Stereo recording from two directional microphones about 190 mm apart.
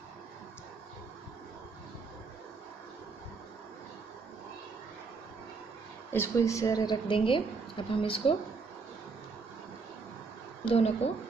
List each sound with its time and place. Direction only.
6.1 s a woman's voice: 15° left (ahead or behind)
10.6 s speech: 30° left (ahead or behind)